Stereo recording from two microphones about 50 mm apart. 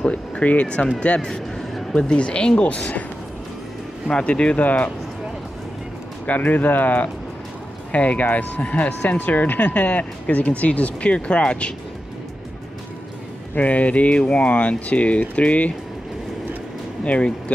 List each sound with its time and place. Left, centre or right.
0.0 s speech: left
1.2 s a sound: centre
2.0 s speech: left
4.1 s speech: left
6.2 s speech: left
13.6 s speech: left
17.0 s speech: left